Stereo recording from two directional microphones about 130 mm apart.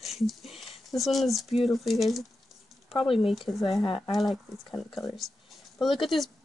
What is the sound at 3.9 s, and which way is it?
Speech, 40° left (ahead or behind).